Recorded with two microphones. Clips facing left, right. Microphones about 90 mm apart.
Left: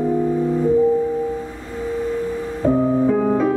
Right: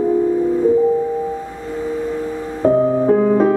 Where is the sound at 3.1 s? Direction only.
45° right (ahead or behind).